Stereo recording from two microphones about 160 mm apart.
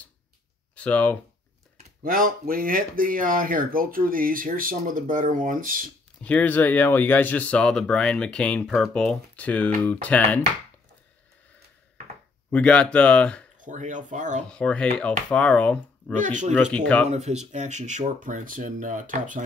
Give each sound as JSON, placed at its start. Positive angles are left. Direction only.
{"t": 0.7, "sound": "speech", "side_deg": 10}
{"t": 2.0, "sound": "speech", "side_deg": -60}
{"t": 6.2, "sound": "speech", "side_deg": 10}
{"t": 12.4, "sound": "speech", "side_deg": 10}
{"t": 13.6, "sound": "speech", "side_deg": -50}
{"t": 14.5, "sound": "speech", "side_deg": 5}
{"t": 16.2, "sound": "speech", "side_deg": -50}
{"t": 16.7, "sound": "speech", "side_deg": 10}
{"t": 17.1, "sound": "speech", "side_deg": -45}